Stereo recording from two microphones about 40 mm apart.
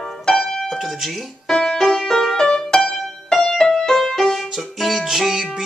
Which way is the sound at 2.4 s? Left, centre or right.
Centre.